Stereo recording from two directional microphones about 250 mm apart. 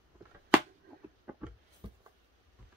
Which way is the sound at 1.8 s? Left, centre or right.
Right.